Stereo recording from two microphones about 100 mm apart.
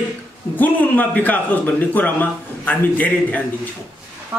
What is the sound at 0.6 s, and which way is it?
A man's voice, 15° left (ahead or behind).